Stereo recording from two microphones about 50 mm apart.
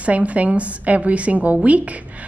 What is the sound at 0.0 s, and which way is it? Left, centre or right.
A woman's voice, right.